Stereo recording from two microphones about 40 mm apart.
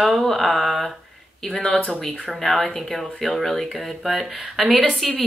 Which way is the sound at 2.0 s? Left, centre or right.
Centre.